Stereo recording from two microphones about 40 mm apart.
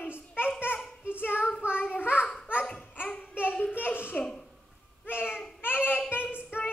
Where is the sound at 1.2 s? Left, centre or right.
Left.